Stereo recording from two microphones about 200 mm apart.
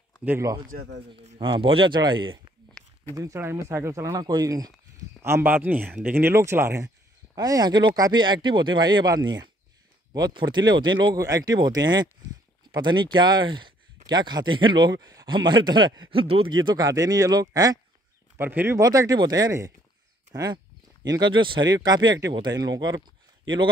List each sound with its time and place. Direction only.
0.2 s speech: 10° right (ahead or behind)
0.7 s speech: 60° right (ahead or behind)
1.2 s speech: 25° right (ahead or behind)
2.8 s a sound: 5° left (ahead or behind)
3.2 s speech: 15° right (ahead or behind)